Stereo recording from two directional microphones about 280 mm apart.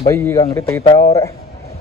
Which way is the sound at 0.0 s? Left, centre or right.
Centre.